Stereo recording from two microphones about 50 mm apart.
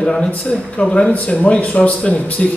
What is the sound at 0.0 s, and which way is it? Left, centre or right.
A man's voice, centre.